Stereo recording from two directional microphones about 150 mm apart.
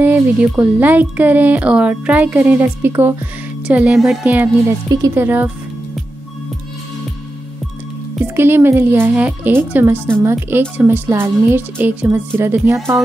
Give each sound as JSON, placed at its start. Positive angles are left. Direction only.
{"t": 0.0, "sound": "a sound", "side_deg": -15}
{"t": 0.5, "sound": "speech", "side_deg": -10}
{"t": 8.4, "sound": "speech", "side_deg": -15}